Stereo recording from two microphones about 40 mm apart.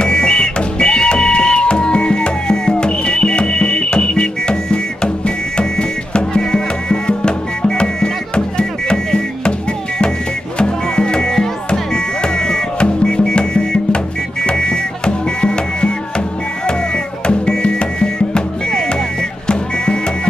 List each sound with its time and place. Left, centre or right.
0.0 s music: centre
10.6 s music: left
17.3 s music: left